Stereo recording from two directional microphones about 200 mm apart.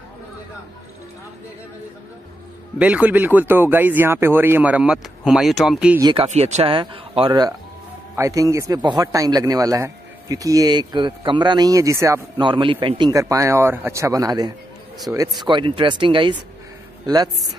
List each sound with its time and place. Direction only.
2.8 s a man's voice: 5° right (ahead or behind)
5.9 s speech: 20° right (ahead or behind)
6.2 s a man's voice: 35° right (ahead or behind); by 15.2 s 10° right (ahead or behind)
15.4 s speech: 25° right (ahead or behind)